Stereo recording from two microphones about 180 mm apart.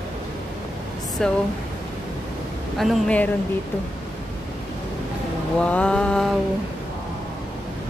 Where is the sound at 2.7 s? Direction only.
Centre (ahead or behind).